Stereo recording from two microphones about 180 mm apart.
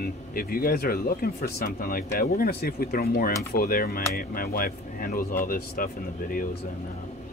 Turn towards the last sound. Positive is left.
turn(degrees=55)  # may be behind; listen again after turning